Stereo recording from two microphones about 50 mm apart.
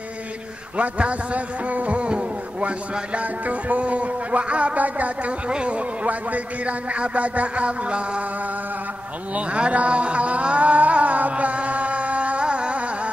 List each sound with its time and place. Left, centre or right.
0.7 s a man's voice: right
9.3 s music: right